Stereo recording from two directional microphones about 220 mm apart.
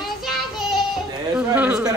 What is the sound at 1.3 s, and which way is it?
Speech, 5° right (ahead or behind).